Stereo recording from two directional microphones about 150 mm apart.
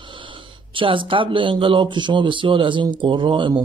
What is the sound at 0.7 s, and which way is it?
Speech, 35° right (ahead or behind).